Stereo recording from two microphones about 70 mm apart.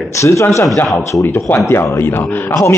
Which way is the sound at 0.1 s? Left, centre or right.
Left.